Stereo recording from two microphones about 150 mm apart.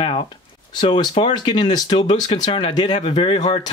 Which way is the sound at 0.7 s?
30° left (ahead or behind).